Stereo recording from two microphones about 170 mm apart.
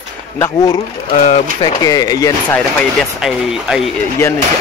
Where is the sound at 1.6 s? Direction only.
20° left (ahead or behind).